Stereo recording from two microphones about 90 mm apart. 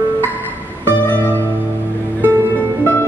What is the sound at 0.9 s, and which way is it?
Music, 25° left (ahead or behind).